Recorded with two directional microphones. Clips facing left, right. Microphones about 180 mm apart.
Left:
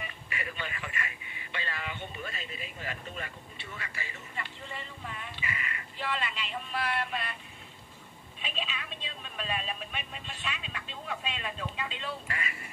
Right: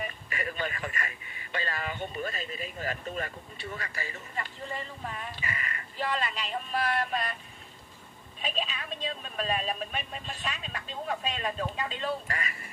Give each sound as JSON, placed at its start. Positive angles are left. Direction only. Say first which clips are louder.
{"t": 0.0, "sound": "speech", "louder": "right 5 dB", "side_deg": -40}
{"t": 8.4, "sound": "speech", "louder": "right 4 dB", "side_deg": -40}